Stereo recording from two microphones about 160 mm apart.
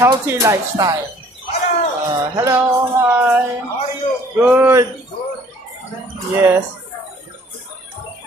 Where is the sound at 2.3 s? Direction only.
20° right (ahead or behind).